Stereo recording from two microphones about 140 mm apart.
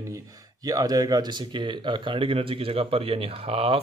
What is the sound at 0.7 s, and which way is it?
Speech, 25° right (ahead or behind).